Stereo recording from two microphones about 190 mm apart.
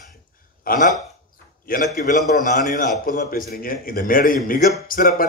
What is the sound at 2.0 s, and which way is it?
A man's voice, 50° left (ahead or behind).